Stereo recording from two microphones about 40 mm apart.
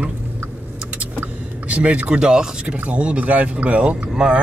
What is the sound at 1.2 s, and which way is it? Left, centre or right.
Vehicle, right.